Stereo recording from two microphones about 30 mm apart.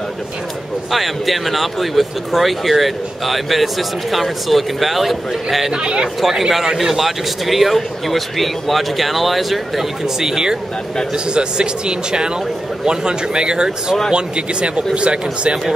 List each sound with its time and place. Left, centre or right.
0.9 s speech: centre
6.2 s a man's voice: centre
10.0 s speech: centre
11.3 s speech: right